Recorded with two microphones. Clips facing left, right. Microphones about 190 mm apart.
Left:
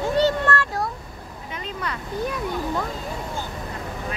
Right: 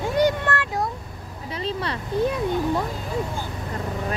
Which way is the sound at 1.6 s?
30° right (ahead or behind).